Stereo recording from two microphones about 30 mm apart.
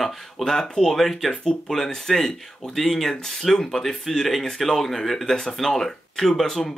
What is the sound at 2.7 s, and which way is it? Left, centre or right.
Speech, centre.